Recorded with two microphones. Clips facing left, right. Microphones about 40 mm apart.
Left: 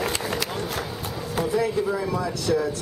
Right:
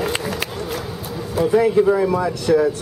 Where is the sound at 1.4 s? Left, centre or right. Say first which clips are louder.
Right 9 dB; right.